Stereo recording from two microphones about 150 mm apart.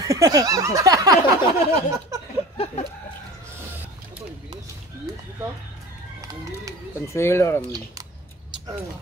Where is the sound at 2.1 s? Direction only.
20° right (ahead or behind).